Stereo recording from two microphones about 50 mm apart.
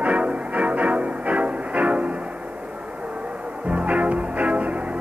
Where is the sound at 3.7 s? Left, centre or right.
Right.